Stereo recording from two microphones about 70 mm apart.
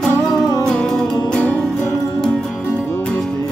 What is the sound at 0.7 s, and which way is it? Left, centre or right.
Music, centre.